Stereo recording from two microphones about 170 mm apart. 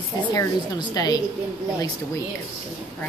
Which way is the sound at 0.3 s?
20° left (ahead or behind).